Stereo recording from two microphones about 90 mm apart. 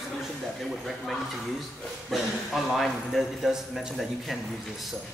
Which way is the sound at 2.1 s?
Centre (ahead or behind).